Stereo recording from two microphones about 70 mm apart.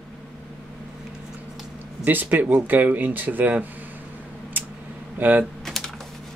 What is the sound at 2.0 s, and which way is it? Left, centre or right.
Speech, right.